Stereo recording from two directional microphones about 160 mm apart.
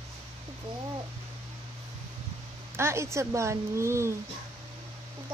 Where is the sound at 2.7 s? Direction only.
15° right (ahead or behind).